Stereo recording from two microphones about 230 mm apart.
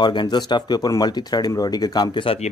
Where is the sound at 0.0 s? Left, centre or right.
Centre.